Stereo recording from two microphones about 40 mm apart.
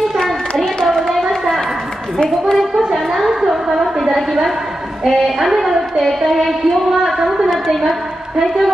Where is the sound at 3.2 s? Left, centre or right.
Centre.